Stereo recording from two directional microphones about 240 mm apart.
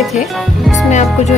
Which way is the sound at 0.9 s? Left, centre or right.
Left.